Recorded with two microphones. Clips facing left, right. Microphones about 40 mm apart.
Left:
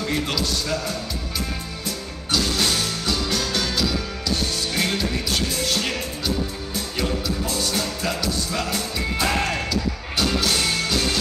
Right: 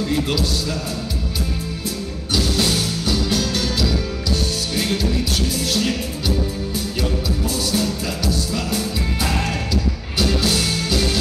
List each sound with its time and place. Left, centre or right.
3.3 s music: left
5.6 s music: left
7.4 s music: left